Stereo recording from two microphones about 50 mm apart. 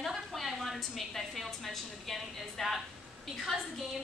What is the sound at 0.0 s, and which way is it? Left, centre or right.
A woman's voice, centre.